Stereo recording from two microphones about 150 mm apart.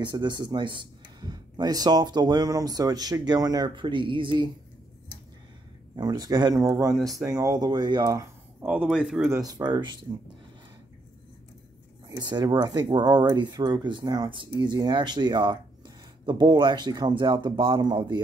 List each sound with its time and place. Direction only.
0.0 s speech: 30° right (ahead or behind)
5.9 s speech: 25° right (ahead or behind)
8.6 s speech: 10° right (ahead or behind)
9.3 s speech: 25° right (ahead or behind)
12.2 s speech: 30° right (ahead or behind)